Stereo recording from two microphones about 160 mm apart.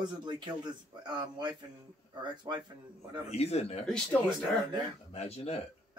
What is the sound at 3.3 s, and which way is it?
Speech, 40° left (ahead or behind).